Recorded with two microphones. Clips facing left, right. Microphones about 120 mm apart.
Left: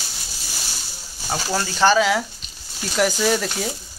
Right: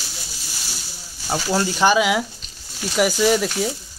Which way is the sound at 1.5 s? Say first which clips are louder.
Even; 15° right (ahead or behind).